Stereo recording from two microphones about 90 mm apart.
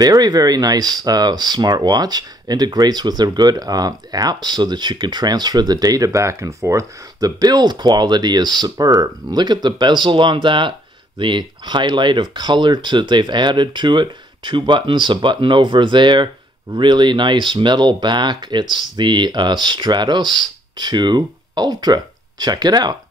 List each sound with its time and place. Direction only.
0.0 s speech: 45° right (ahead or behind)